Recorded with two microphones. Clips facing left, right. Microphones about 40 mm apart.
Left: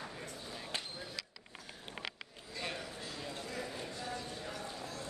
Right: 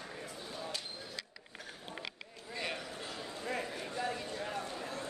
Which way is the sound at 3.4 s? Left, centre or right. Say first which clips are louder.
Right 7 dB; right.